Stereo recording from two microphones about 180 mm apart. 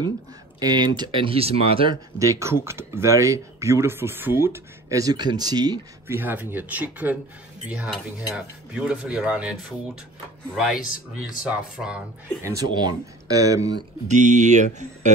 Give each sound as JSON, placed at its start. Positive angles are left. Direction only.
{"t": 0.6, "sound": "speech", "side_deg": -20}
{"t": 2.1, "sound": "speech", "side_deg": -15}
{"t": 6.1, "sound": "speech", "side_deg": -10}
{"t": 10.6, "sound": "speech", "side_deg": -5}
{"t": 12.4, "sound": "speech", "side_deg": -20}
{"t": 14.0, "sound": "speech", "side_deg": -40}